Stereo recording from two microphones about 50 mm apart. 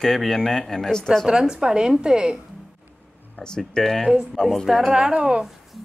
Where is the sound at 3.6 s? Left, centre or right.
Centre.